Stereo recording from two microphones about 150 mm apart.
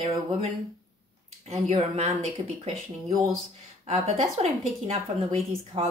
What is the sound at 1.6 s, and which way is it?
Speech, 50° right (ahead or behind).